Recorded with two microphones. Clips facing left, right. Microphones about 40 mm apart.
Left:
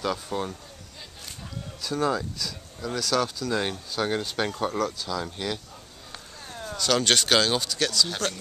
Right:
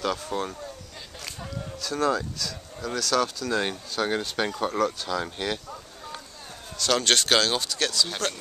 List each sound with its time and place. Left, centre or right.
0.0 s speech: centre
1.8 s speech: centre
5.0 s speech: right
6.8 s speech: centre